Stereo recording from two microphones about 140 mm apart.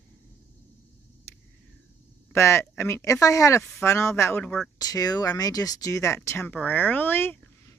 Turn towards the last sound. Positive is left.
turn(degrees=15)  # may be behind; listen again after turning